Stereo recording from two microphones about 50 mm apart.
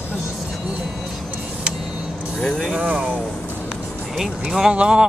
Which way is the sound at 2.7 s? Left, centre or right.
Right.